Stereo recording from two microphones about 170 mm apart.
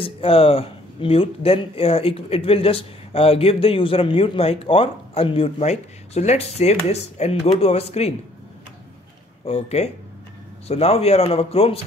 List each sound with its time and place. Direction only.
0.0 s speech: 35° left (ahead or behind)
9.4 s speech: 40° left (ahead or behind)